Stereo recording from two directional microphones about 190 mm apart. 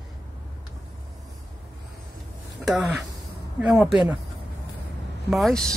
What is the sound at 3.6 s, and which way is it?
Speech, 5° right (ahead or behind).